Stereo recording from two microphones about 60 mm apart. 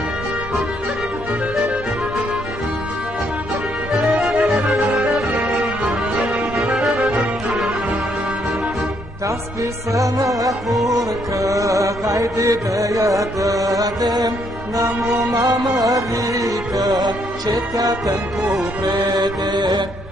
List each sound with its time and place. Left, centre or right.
3.9 s music: centre
5.3 s music: centre
9.9 s music: right
15.3 s music: right